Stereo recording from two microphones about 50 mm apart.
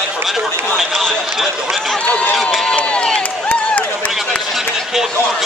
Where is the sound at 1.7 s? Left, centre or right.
Centre.